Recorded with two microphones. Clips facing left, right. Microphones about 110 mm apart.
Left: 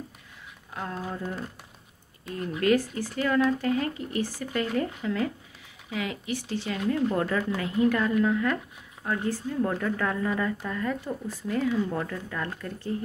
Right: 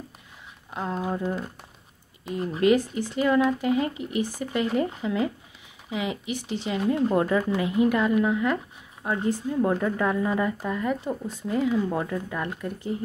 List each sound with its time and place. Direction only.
0.7 s speech: 20° right (ahead or behind)